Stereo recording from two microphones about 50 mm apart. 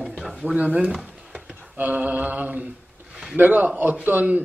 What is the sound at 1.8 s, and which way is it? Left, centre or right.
A man's voice, right.